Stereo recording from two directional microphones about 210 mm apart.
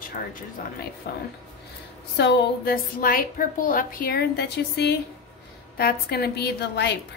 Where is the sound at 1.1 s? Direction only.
50° left (ahead or behind).